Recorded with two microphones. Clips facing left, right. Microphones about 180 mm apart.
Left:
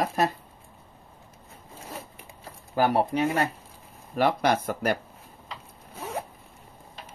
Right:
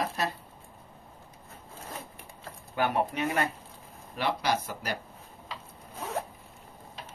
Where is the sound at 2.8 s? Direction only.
35° left (ahead or behind).